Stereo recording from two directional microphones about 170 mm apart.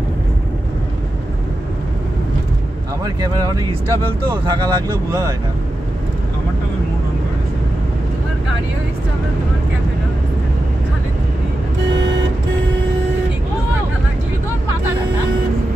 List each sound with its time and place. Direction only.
3.2 s speech: 20° right (ahead or behind)